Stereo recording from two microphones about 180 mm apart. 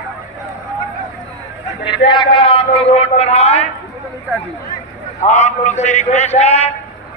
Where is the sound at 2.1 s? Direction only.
25° left (ahead or behind).